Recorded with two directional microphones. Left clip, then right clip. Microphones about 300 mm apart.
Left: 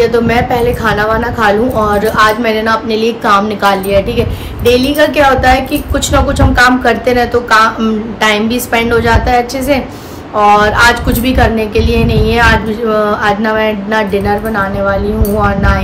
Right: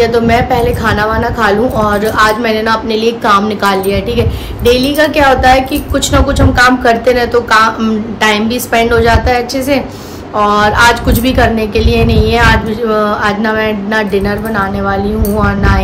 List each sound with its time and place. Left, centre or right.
0.0 s a woman's voice: centre